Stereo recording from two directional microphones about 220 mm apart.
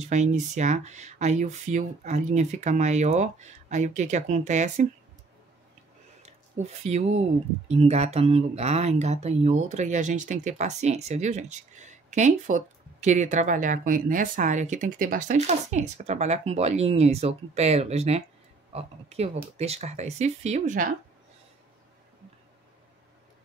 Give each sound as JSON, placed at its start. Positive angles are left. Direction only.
{"t": 0.0, "sound": "speech", "side_deg": -35}
{"t": 6.2, "sound": "a sound", "side_deg": -30}
{"t": 7.6, "sound": "speech", "side_deg": -30}